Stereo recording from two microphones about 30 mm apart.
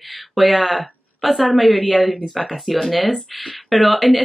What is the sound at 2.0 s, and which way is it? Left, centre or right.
Speech, centre.